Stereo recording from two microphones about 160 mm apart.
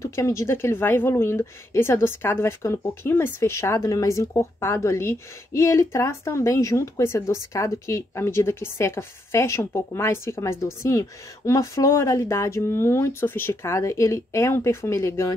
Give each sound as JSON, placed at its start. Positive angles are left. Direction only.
{"t": 0.0, "sound": "speech", "side_deg": 20}